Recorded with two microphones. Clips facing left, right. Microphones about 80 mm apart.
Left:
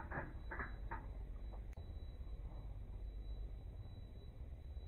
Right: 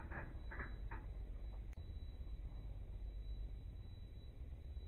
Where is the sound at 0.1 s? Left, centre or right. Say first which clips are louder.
Left 5 dB; left.